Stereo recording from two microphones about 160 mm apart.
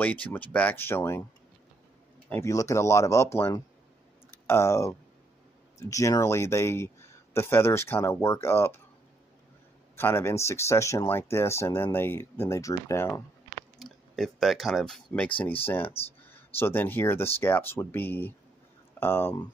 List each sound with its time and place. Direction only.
0.0 s speech: 10° left (ahead or behind)
2.2 s speech: 15° left (ahead or behind)
9.9 s speech: 15° left (ahead or behind)
13.7 s speech: centre (ahead or behind)